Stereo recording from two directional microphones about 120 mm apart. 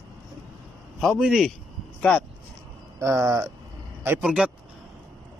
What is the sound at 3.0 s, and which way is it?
Speech, 25° right (ahead or behind).